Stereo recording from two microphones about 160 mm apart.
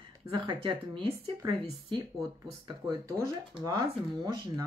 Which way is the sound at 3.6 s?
25° right (ahead or behind).